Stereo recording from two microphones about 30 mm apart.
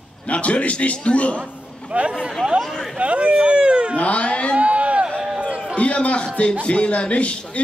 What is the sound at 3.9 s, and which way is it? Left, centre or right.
Speech, left.